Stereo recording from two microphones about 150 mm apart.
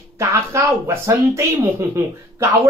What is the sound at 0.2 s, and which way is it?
Speech, 20° right (ahead or behind).